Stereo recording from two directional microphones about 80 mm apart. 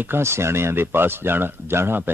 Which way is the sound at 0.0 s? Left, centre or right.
Right.